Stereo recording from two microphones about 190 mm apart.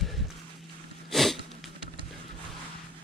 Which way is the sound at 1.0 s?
Centre (ahead or behind).